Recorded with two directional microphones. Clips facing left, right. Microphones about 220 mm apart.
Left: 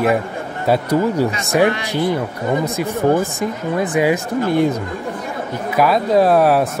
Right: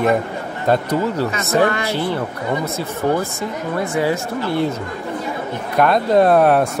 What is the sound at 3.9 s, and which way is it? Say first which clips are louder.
Speech: left 4 dB; 15° left (ahead or behind).